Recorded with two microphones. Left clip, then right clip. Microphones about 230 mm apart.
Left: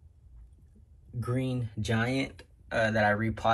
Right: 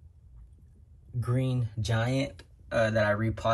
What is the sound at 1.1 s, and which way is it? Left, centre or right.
Speech, centre.